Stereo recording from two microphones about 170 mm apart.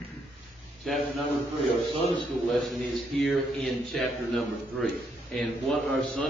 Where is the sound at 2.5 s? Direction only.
Centre (ahead or behind).